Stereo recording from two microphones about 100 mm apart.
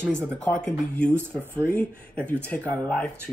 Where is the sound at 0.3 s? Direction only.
10° left (ahead or behind).